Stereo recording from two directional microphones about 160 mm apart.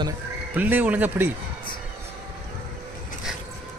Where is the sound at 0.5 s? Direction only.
10° right (ahead or behind).